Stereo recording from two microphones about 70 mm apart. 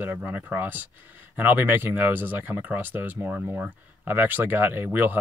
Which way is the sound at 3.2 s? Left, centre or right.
Centre.